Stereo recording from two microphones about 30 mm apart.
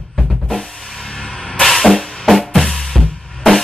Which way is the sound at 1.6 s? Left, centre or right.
Centre.